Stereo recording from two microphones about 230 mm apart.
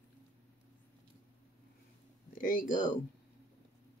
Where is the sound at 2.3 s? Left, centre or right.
Left.